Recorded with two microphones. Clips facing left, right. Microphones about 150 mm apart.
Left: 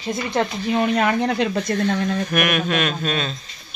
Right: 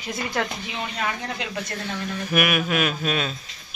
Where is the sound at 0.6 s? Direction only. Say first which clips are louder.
Left 10 dB; 55° left (ahead or behind); by 2.0 s 70° left (ahead or behind).